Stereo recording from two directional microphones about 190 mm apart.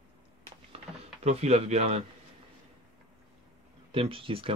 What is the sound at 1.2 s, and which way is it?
Speech, 35° right (ahead or behind).